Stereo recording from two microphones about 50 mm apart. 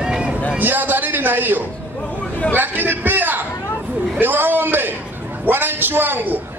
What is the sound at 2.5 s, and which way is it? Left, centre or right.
A man's voice, right.